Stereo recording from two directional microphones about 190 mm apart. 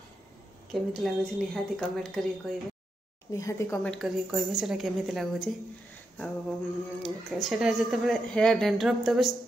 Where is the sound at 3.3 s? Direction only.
15° left (ahead or behind).